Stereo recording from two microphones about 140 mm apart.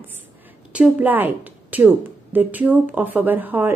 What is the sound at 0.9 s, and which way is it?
A woman's voice, 10° right (ahead or behind).